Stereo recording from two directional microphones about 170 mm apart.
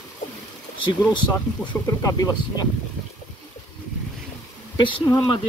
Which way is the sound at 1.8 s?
20° left (ahead or behind).